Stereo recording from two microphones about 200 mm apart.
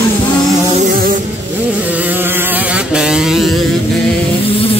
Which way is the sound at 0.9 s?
45° right (ahead or behind).